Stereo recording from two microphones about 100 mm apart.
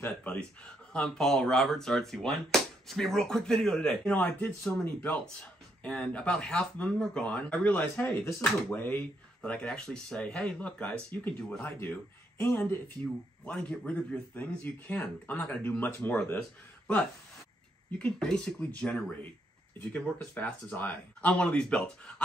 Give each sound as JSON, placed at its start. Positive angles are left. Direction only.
{"t": 0.2, "sound": "a man's voice", "side_deg": 15}
{"t": 17.9, "sound": "speech", "side_deg": 5}